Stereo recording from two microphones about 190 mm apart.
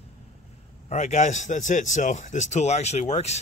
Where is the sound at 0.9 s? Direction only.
40° left (ahead or behind).